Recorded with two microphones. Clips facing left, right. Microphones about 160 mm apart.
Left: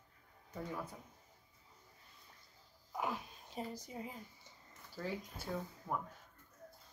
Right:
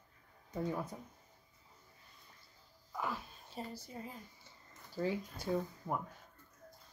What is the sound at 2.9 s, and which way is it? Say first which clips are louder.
Speech: even; 20° left (ahead or behind).